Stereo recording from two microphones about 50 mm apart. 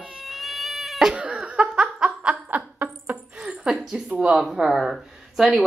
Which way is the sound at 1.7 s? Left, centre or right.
Centre.